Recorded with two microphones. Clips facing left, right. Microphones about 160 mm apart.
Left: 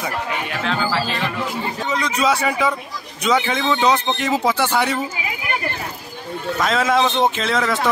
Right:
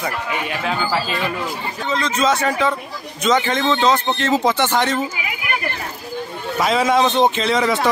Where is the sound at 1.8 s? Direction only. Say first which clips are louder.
Right 2 dB; 15° left (ahead or behind).